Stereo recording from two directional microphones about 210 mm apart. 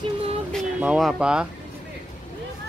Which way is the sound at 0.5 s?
5° right (ahead or behind).